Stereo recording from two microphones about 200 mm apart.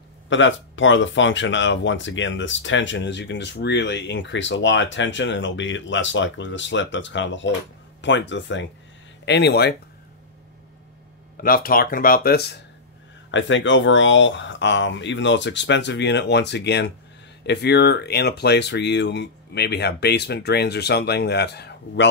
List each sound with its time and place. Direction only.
0.3 s speech: 70° left (ahead or behind)
11.4 s speech: 45° left (ahead or behind)
13.3 s speech: 70° left (ahead or behind)